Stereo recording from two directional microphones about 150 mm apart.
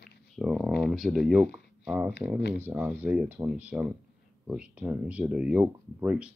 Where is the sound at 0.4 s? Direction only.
Centre (ahead or behind).